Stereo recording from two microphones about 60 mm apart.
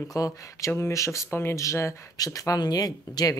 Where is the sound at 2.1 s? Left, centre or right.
Left.